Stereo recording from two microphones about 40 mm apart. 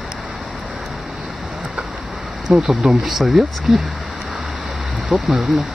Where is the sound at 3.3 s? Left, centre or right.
Centre.